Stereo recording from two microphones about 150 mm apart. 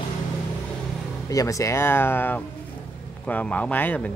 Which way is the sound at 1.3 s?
20° left (ahead or behind).